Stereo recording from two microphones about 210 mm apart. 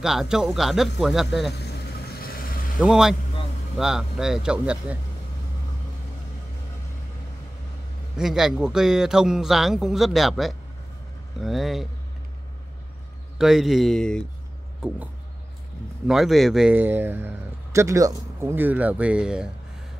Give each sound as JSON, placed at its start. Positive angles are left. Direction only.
{"t": 0.0, "sound": "speech", "side_deg": 0}
{"t": 1.5, "sound": "vehicle", "side_deg": 50}
{"t": 2.8, "sound": "speech", "side_deg": 0}
{"t": 8.2, "sound": "speech", "side_deg": 0}
{"t": 13.4, "sound": "speech", "side_deg": 0}
{"t": 16.1, "sound": "a man's voice", "side_deg": 0}